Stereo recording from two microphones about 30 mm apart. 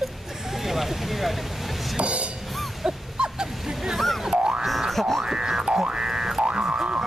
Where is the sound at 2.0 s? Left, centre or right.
Right.